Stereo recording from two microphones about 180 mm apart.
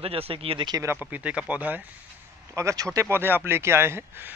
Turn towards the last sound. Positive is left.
turn(degrees=-15)  # may be behind; listen again after turning